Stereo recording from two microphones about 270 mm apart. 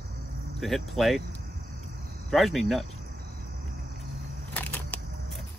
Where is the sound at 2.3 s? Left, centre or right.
Centre.